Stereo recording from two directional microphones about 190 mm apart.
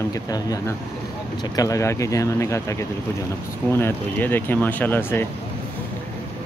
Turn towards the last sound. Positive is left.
turn(degrees=10)  # may be behind; listen again after turning